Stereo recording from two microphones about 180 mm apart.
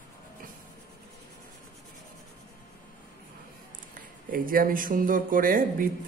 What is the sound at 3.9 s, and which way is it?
Speech, 50° right (ahead or behind).